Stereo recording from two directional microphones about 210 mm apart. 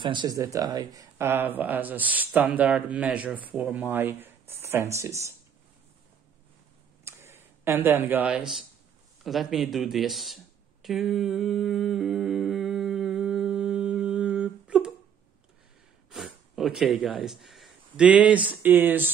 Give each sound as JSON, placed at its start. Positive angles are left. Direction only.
{"t": 0.0, "sound": "speech", "side_deg": -20}
{"t": 7.1, "sound": "a sound", "side_deg": -10}
{"t": 16.1, "sound": "speech", "side_deg": 0}